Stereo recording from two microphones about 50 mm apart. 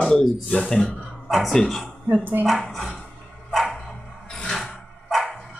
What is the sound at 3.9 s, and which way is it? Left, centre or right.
Dog, centre.